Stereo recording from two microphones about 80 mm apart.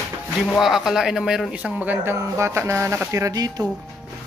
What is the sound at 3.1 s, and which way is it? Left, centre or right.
Speech, right.